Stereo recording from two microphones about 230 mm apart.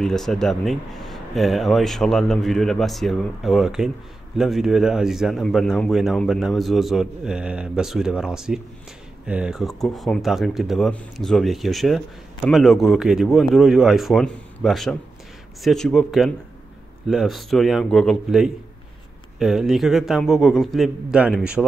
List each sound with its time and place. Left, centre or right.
0.0 s speech: centre